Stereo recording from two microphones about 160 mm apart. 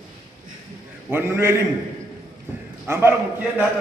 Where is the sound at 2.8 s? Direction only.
15° right (ahead or behind).